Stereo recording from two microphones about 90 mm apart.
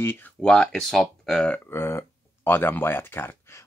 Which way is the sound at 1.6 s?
25° left (ahead or behind).